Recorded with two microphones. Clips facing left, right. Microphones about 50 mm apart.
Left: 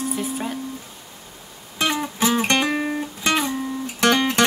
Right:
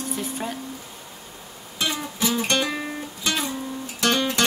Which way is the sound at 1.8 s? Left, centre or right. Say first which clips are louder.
Left 4 dB; left.